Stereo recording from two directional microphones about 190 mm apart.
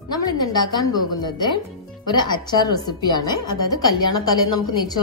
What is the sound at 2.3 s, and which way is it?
A woman's voice, 20° left (ahead or behind).